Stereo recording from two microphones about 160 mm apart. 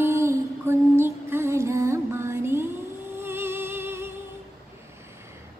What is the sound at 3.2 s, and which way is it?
Music, 15° right (ahead or behind).